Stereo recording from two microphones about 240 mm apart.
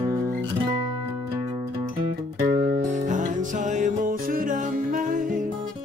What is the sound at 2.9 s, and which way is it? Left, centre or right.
Music, right.